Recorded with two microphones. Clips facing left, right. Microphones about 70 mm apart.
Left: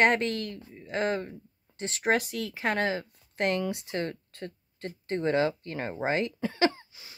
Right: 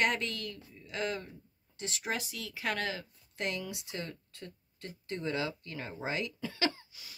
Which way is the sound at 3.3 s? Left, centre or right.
Left.